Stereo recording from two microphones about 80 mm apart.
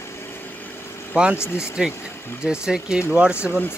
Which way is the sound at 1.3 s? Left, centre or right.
Left.